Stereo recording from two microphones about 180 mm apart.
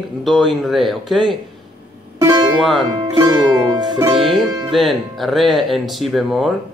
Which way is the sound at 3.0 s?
25° right (ahead or behind).